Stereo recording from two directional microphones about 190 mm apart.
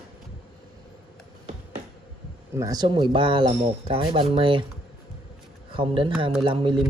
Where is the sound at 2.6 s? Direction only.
20° right (ahead or behind).